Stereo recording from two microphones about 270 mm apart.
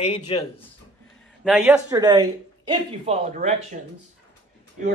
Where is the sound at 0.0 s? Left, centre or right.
Left.